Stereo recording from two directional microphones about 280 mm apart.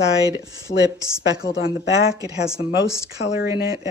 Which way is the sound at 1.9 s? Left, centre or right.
Centre.